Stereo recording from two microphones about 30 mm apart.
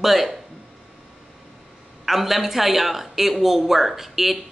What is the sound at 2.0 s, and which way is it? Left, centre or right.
Speech, centre.